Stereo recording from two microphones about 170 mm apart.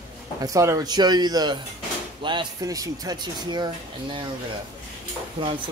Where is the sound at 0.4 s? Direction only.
20° right (ahead or behind).